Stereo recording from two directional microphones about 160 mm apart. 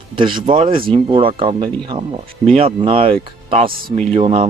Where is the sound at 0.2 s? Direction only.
30° right (ahead or behind).